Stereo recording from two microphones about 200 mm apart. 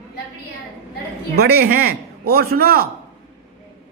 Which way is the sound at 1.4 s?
50° right (ahead or behind).